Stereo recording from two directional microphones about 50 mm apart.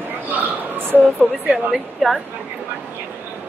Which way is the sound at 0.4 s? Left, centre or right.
Right.